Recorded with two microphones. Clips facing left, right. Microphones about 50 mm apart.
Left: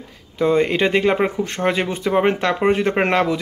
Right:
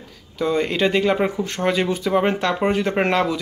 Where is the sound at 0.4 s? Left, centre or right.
Left.